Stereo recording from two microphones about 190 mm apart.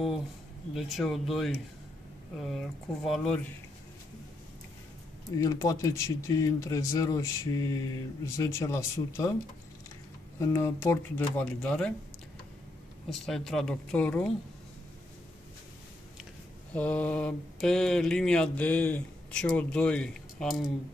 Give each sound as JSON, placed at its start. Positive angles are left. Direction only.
{"t": 0.7, "sound": "mantra", "side_deg": 0}
{"t": 5.4, "sound": "speech", "side_deg": 15}
{"t": 10.4, "sound": "speech", "side_deg": 15}
{"t": 13.1, "sound": "mantra", "side_deg": 0}
{"t": 16.7, "sound": "mantra", "side_deg": 10}